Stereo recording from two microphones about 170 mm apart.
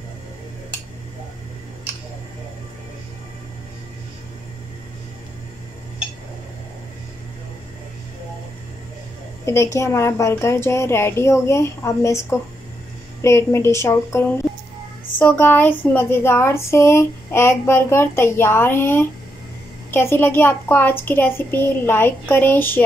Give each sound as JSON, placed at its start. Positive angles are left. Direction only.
{"t": 9.5, "sound": "speech", "side_deg": 15}